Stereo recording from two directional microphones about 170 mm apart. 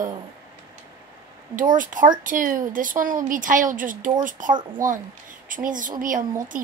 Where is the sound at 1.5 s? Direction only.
50° right (ahead or behind).